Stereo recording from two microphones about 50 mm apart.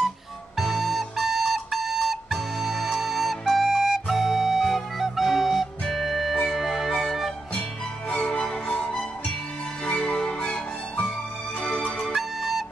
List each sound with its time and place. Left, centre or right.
0.6 s flute: centre
5.9 s music: centre
8.1 s music: left
12.1 s flute: centre